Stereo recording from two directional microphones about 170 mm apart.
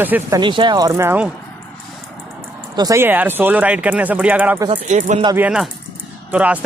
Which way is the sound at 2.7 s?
15° right (ahead or behind).